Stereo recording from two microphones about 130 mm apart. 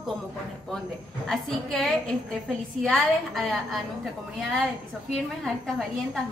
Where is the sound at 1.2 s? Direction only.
5° left (ahead or behind).